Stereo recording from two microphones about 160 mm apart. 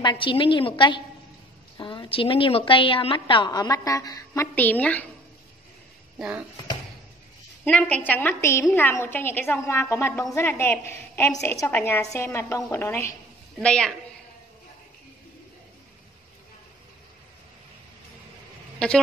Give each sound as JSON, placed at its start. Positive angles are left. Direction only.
{"t": 0.0, "sound": "a woman's voice", "side_deg": 30}
{"t": 6.1, "sound": "speech", "side_deg": -5}
{"t": 7.6, "sound": "a woman's voice", "side_deg": 10}
{"t": 18.8, "sound": "a man's voice", "side_deg": 5}